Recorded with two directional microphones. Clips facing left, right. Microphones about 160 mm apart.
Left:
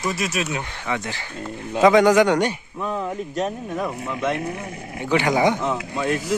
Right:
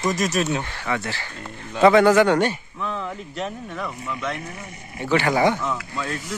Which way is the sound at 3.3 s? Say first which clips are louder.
Left 5 dB; 40° left (ahead or behind).